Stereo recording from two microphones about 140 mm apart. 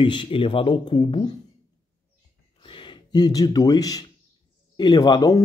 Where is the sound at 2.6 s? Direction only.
35° left (ahead or behind).